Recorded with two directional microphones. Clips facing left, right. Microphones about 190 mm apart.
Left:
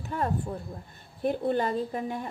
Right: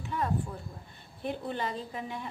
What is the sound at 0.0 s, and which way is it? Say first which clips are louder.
A woman's voice: left 2 dB; 45° left (ahead or behind).